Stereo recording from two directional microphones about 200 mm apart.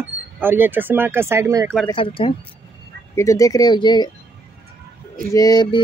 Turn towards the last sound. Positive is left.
turn(degrees=20)  # may be behind; listen again after turning